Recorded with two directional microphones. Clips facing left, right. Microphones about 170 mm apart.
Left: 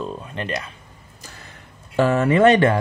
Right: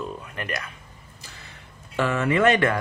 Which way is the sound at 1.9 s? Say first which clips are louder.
Left 5 dB; 40° left (ahead or behind).